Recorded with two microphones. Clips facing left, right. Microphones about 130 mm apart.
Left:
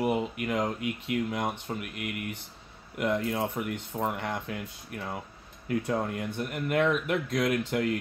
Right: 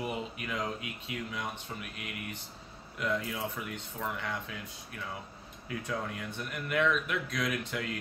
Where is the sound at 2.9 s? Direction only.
45° left (ahead or behind).